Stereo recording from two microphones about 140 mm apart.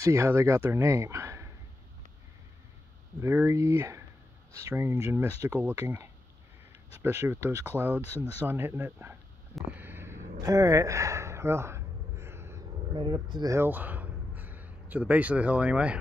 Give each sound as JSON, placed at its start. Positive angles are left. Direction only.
{"t": 0.0, "sound": "speech", "side_deg": -20}
{"t": 3.2, "sound": "speech", "side_deg": -20}
{"t": 9.6, "sound": "a sound", "side_deg": -10}
{"t": 12.9, "sound": "speech", "side_deg": -30}
{"t": 13.6, "sound": "speech", "side_deg": -15}